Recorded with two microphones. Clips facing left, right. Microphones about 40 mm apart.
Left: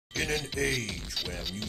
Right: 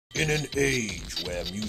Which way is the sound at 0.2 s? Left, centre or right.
Right.